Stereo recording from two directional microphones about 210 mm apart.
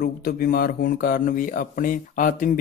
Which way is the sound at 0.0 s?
45° left (ahead or behind).